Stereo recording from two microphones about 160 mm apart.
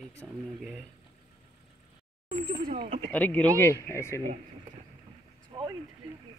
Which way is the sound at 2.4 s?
55° right (ahead or behind).